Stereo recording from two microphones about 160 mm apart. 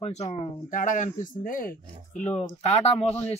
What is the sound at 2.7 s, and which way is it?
Speech, 40° left (ahead or behind).